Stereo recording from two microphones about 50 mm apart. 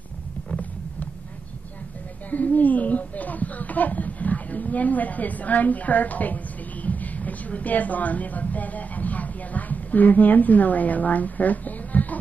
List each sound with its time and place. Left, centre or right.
2.3 s speech: left